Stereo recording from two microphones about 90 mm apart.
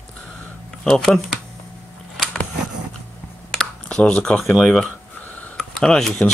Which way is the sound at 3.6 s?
10° left (ahead or behind).